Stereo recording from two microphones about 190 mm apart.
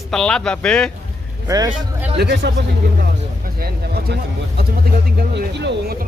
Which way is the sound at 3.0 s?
55° right (ahead or behind).